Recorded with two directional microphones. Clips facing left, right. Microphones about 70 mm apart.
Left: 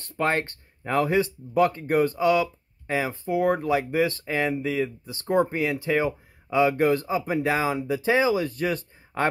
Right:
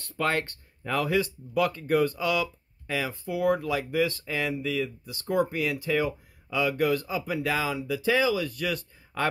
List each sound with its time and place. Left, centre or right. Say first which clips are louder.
0.2 s speech: left 3 dB; left